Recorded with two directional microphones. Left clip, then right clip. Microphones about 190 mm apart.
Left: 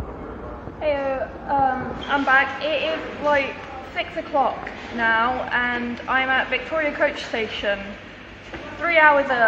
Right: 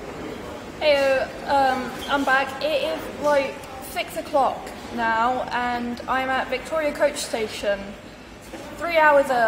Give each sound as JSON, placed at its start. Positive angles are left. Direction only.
{"t": 0.7, "sound": "a woman's voice", "side_deg": -15}
{"t": 2.9, "sound": "a woman's voice", "side_deg": 0}
{"t": 4.3, "sound": "a woman's voice", "side_deg": -15}
{"t": 7.0, "sound": "a woman's voice", "side_deg": 0}
{"t": 8.8, "sound": "a woman's voice", "side_deg": -5}